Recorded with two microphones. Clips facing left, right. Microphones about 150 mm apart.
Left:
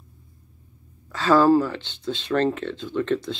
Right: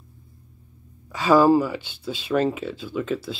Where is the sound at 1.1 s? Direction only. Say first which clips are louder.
Right 1 dB; 10° right (ahead or behind).